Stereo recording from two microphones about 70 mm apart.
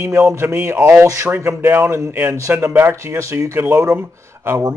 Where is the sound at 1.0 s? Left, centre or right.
Right.